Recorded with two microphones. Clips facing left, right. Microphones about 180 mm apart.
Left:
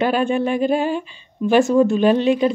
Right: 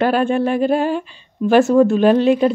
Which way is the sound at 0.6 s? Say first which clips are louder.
Right 2 dB; 40° right (ahead or behind).